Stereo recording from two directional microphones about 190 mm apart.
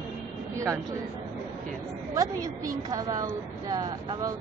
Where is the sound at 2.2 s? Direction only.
20° right (ahead or behind).